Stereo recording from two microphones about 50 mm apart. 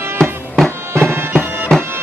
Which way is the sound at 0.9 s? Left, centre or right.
Right.